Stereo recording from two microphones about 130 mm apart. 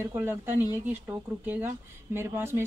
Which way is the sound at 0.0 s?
20° right (ahead or behind).